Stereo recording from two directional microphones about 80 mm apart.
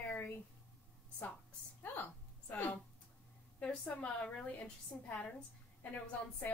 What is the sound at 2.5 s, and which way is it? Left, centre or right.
Speech, left.